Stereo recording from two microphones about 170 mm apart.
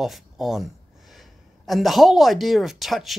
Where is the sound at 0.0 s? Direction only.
Centre (ahead or behind).